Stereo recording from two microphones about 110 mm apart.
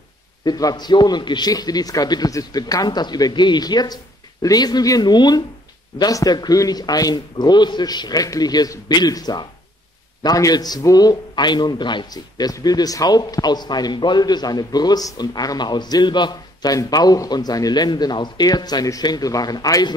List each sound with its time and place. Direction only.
0.5 s a man's voice: 35° left (ahead or behind)